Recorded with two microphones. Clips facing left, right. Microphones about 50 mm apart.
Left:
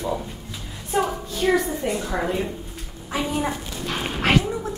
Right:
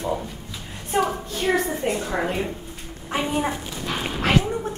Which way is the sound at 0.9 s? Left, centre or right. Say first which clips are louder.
Right 1 dB; right.